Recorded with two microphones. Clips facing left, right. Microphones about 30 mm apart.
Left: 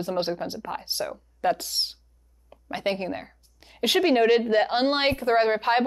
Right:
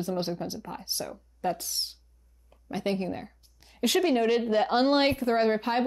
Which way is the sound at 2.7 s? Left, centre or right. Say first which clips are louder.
Left 2 dB; left.